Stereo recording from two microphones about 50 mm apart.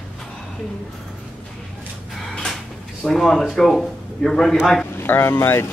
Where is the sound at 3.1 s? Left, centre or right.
Centre.